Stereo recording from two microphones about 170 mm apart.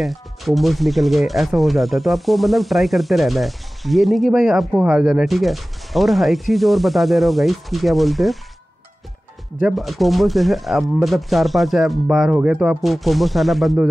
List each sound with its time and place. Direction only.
0.0 s speech: centre (ahead or behind)
9.6 s speech: 5° right (ahead or behind)